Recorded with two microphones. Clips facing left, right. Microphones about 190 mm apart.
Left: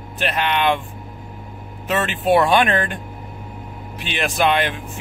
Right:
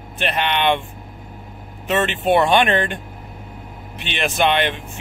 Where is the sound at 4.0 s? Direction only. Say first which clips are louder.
Even; centre (ahead or behind).